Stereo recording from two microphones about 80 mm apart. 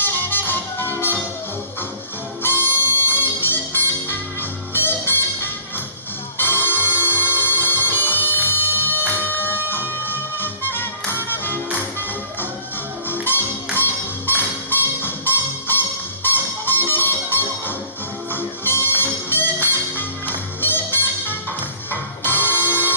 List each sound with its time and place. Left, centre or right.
0.0 s music: left
2.4 s music: left
13.1 s music: left